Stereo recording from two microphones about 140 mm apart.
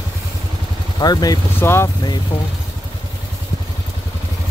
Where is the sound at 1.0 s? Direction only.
30° left (ahead or behind).